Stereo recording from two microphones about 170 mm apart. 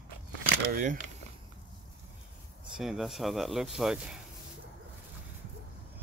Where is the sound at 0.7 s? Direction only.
50° right (ahead or behind).